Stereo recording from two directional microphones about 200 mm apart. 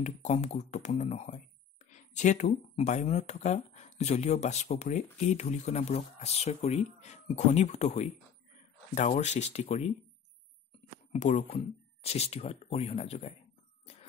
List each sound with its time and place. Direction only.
0.0 s speech: 35° left (ahead or behind)
11.1 s speech: 35° left (ahead or behind)